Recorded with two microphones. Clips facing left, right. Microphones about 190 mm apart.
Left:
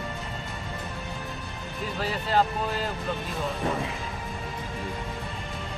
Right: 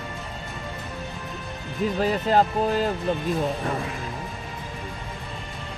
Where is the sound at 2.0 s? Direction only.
45° right (ahead or behind).